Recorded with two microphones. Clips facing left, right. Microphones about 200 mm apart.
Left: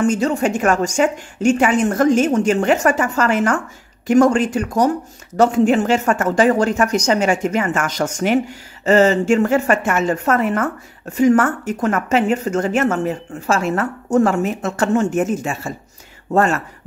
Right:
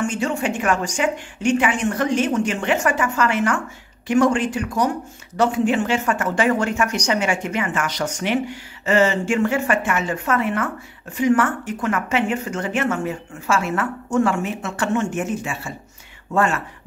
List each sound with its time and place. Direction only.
0.0 s a woman's voice: 40° left (ahead or behind)